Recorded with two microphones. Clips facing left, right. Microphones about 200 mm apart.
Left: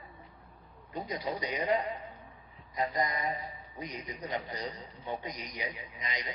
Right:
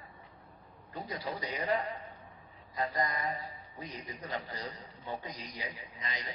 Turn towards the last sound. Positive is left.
turn(degrees=20)  # may be behind; listen again after turning